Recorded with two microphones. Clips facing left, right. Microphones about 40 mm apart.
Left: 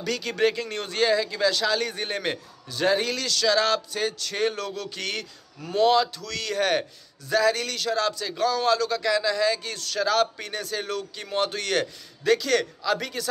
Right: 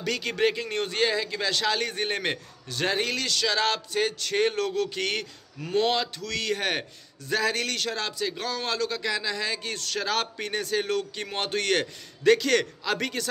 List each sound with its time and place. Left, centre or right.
0.0 s speech: right
8.0 s speech: right